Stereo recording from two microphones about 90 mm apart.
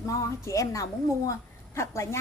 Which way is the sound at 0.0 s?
40° left (ahead or behind).